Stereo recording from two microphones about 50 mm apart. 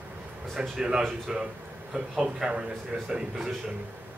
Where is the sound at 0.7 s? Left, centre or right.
Centre.